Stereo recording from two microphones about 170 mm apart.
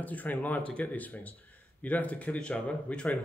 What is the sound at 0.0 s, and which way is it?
Speech, 10° left (ahead or behind).